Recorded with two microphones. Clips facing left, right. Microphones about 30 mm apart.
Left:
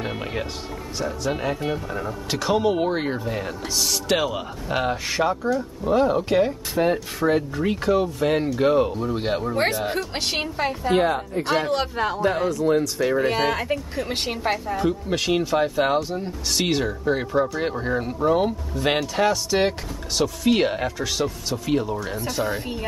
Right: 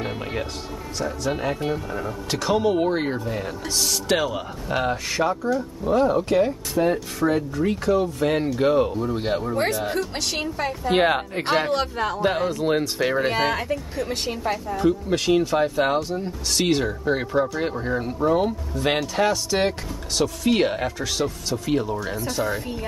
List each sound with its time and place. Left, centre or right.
0.0 s music: centre
0.9 s speech: centre
10.1 s a woman's voice: left
11.0 s speech: right
11.7 s speech: centre
12.4 s speech: right
13.3 s speech: centre
14.4 s a woman's voice: left
14.8 s speech: centre